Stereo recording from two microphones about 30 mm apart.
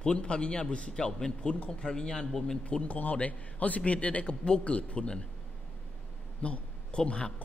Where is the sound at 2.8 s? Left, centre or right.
Left.